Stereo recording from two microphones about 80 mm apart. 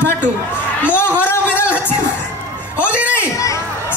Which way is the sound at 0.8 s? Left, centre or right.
Left.